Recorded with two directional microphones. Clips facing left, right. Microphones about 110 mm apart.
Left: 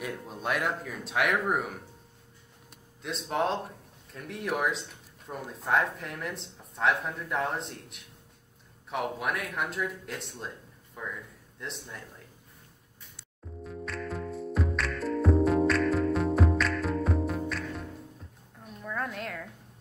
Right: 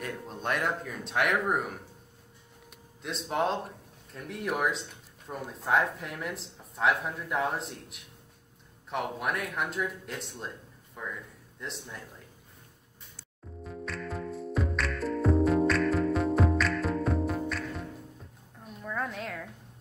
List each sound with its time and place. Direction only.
0.0 s speech: 5° left (ahead or behind)
3.0 s speech: centre (ahead or behind)
13.7 s music: centre (ahead or behind)
18.6 s a sound: centre (ahead or behind)